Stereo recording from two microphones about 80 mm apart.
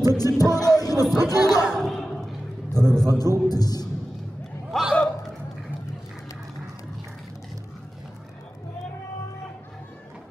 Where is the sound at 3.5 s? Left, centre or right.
Left.